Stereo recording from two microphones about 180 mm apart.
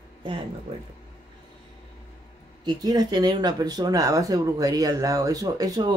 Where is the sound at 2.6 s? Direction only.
20° right (ahead or behind).